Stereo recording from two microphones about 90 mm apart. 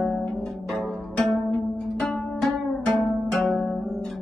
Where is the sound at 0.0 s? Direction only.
5° left (ahead or behind).